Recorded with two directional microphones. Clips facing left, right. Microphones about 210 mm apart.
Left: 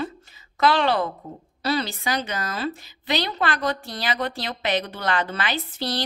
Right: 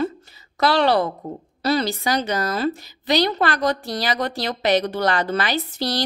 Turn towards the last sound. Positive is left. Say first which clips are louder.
# right 4 dB
turn(degrees=-40)  # may be behind; listen again after turning